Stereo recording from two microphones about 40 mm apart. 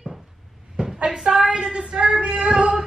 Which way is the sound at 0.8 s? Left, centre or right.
Right.